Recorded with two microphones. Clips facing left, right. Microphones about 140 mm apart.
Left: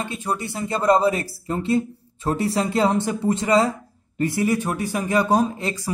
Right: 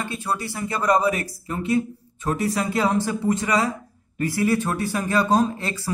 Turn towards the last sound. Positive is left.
turn(degrees=15)  # may be behind; listen again after turning